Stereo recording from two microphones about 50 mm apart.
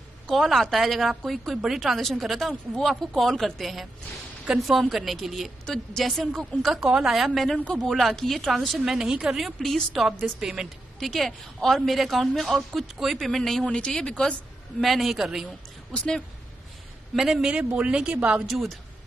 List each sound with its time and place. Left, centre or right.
0.3 s a woman's voice: centre
6.8 s a woman's voice: centre
7.5 s a man's voice: left
7.8 s a woman's voice: centre
8.9 s a woman's voice: centre
9.6 s speech: centre
9.9 s a woman's voice: centre
11.0 s a woman's voice: centre
13.7 s speech: centre
14.8 s a woman's voice: centre
17.1 s a woman's voice: centre
17.5 s speech: right
18.5 s a woman's voice: centre